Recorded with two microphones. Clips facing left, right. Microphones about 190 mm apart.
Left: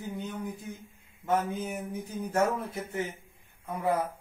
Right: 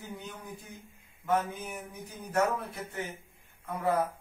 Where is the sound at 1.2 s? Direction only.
30° left (ahead or behind).